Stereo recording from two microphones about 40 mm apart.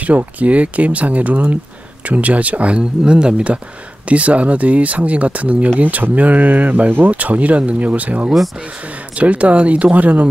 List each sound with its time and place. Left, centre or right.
0.0 s speech: right
7.1 s speech: right